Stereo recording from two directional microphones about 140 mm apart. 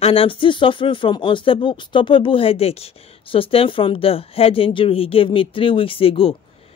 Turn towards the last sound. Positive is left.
turn(degrees=40)  # may be behind; listen again after turning